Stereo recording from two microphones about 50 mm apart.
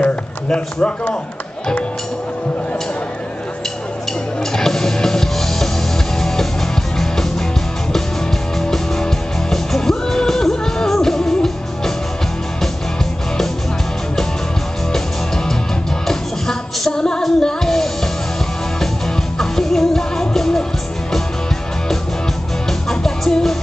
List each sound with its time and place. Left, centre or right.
0.0 s a sound: left
4.5 s music: centre
8.5 s music: centre
14.9 s music: centre
19.3 s music: centre
22.7 s music: centre